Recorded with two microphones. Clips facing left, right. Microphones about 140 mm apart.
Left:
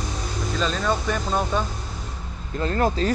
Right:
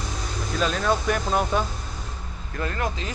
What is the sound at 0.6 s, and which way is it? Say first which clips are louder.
Speech: right 1 dB; 5° right (ahead or behind).